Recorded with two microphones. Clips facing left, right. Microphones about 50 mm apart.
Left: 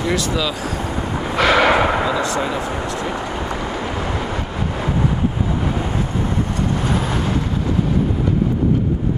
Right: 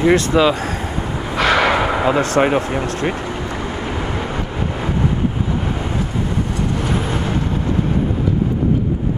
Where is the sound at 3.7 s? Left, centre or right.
Right.